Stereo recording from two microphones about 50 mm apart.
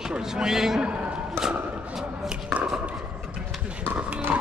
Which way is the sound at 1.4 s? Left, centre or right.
Centre.